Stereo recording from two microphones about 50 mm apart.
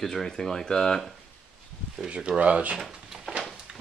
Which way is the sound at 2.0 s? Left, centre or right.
Right.